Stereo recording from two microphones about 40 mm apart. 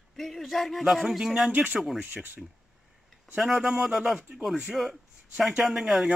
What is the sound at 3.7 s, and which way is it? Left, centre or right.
Speech, centre.